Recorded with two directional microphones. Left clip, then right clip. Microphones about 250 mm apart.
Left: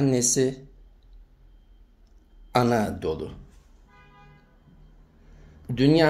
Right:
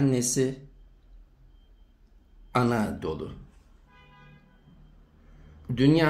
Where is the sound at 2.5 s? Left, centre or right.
Centre.